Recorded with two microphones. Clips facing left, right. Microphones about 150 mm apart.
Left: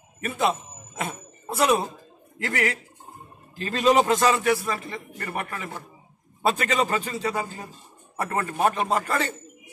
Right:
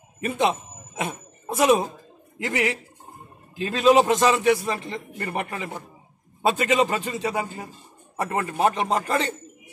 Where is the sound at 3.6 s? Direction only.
10° right (ahead or behind).